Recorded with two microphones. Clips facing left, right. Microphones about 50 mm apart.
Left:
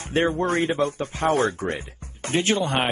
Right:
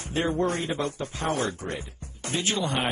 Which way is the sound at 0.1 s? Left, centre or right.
Left.